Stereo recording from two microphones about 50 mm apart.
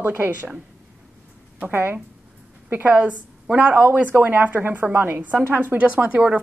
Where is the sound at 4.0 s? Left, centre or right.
Right.